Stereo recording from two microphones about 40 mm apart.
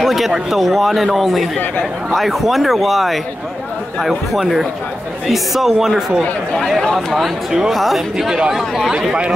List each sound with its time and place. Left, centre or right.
0.0 s a man's voice: centre
7.7 s a man's voice: centre
8.3 s a man's voice: centre
8.5 s a man's voice: centre